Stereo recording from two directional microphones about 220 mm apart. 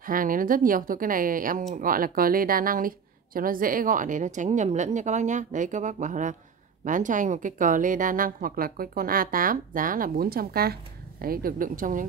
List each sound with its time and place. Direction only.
0.0 s speech: 40° right (ahead or behind)